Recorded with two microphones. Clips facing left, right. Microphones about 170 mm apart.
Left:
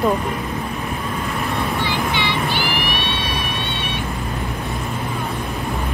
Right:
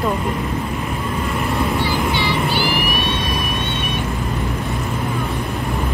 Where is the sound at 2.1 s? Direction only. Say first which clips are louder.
Right 2 dB; 40° right (ahead or behind).